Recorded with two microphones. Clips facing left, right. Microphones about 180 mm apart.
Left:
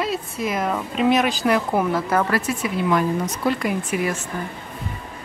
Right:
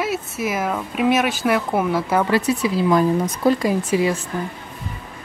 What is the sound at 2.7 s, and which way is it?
Speech, 35° right (ahead or behind).